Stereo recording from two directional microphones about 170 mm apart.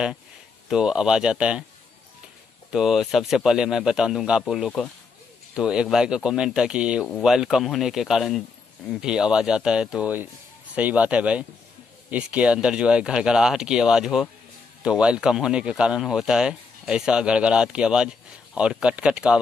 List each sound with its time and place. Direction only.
0.7 s speech: 5° right (ahead or behind)
2.7 s speech: centre (ahead or behind)